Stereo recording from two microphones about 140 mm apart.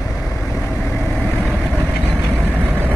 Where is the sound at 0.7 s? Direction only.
15° left (ahead or behind).